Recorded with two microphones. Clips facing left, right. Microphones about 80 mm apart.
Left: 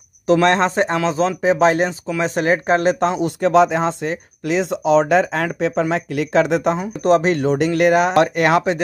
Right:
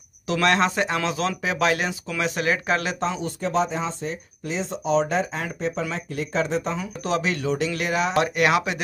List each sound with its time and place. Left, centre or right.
0.3 s speech: left
3.0 s speech: left
5.8 s speech: left
6.1 s speech: left
6.8 s speech: left
8.4 s speech: left